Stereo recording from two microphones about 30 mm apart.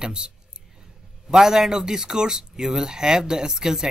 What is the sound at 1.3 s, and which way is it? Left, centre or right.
Speech, centre.